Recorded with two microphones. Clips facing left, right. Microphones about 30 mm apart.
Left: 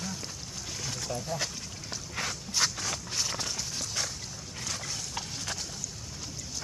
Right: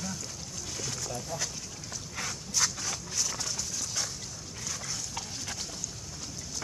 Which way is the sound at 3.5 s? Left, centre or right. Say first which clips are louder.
Left 1 dB; left.